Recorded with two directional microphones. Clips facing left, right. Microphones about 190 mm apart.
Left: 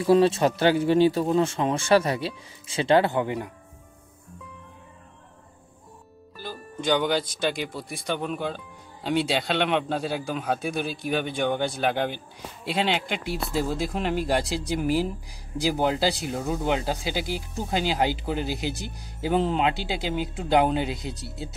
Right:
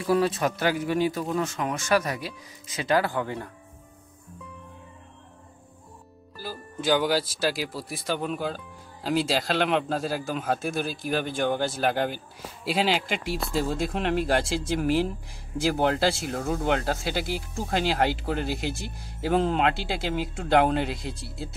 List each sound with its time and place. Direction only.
0.0 s speech: 25° left (ahead or behind)
6.3 s speech: 5° right (ahead or behind)